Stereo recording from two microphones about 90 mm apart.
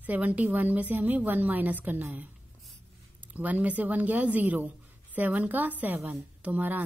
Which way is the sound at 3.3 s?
15° right (ahead or behind).